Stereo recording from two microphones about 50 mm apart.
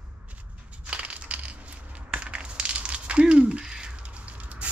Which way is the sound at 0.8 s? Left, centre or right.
Right.